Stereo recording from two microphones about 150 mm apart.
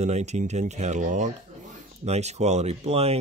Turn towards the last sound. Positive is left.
turn(degrees=-45)  # may be behind; listen again after turning